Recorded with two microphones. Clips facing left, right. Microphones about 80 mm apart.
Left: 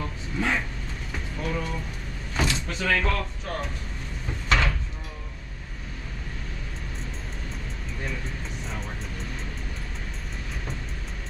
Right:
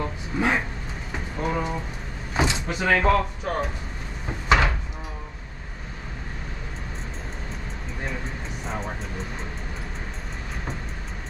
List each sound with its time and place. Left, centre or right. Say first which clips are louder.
0.0 s a sound: right 4 dB; centre
1.1 s vehicle: right 4 dB; right
2.3 s speech: right 3 dB; centre
4.5 s door: right 4 dB; centre
8.6 s music: right 7 dB; right